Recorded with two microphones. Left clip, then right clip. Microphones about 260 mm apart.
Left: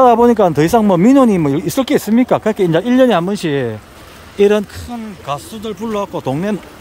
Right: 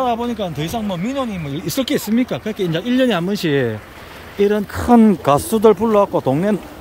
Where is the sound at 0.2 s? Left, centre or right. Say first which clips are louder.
Left 13 dB; centre.